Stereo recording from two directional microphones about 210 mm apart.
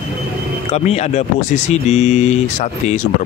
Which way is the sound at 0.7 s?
30° left (ahead or behind).